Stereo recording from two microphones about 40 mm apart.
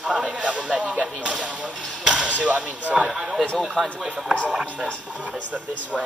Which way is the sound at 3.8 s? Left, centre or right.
Centre.